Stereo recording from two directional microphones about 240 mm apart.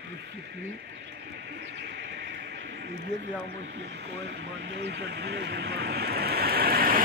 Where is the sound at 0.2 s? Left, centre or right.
Right.